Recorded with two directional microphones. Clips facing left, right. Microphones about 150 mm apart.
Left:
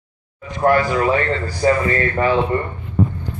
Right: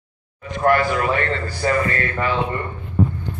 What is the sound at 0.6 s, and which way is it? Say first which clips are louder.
A man's voice: left 2 dB; 30° left (ahead or behind).